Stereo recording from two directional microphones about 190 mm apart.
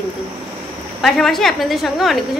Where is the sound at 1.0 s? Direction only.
Centre (ahead or behind).